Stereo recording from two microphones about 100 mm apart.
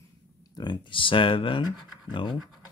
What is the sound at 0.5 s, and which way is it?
Speech, 45° left (ahead or behind).